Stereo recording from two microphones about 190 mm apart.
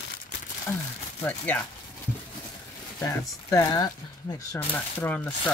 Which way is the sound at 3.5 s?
15° left (ahead or behind).